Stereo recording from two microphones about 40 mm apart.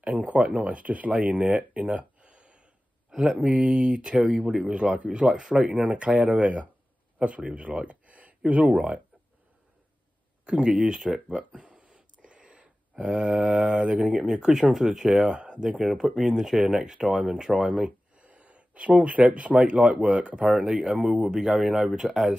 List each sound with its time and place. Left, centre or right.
0.0 s speech: right
1.5 s a sound: right
3.1 s a sound: centre
3.3 s speech: right
7.5 s gasp: right
8.5 s speech: right
10.4 s speech: right
11.6 s a sound: right
13.0 s speech: right
14.1 s speech: centre
15.8 s speech: centre